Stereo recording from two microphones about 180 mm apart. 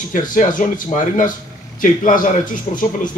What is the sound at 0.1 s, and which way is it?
Speech, 45° left (ahead or behind).